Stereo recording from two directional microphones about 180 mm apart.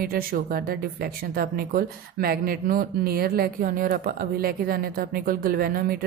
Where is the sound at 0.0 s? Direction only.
55° right (ahead or behind).